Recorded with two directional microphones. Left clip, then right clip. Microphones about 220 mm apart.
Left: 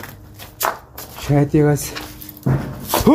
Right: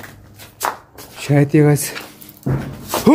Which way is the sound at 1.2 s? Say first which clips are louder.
Right 2 dB; 15° right (ahead or behind).